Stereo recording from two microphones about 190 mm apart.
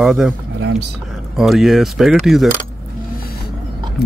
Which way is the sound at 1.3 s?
Centre (ahead or behind).